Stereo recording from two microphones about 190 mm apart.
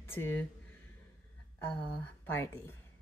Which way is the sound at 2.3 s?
10° left (ahead or behind).